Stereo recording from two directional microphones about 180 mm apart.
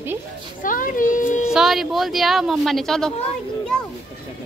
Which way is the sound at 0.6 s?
50° left (ahead or behind).